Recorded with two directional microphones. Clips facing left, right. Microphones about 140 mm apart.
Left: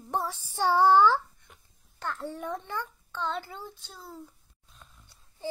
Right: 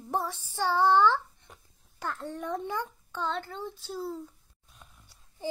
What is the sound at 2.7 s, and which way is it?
Speech, 15° right (ahead or behind).